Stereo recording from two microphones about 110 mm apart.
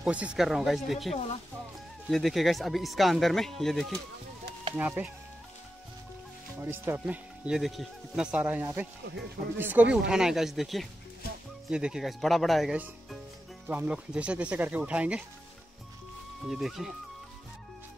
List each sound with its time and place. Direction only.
0.0 s speech: 10° right (ahead or behind)
4.7 s speech: 15° right (ahead or behind)
6.6 s speech: 20° right (ahead or behind)
7.4 s speech: 5° right (ahead or behind)
13.7 s speech: 15° right (ahead or behind)
16.4 s speech: centre (ahead or behind)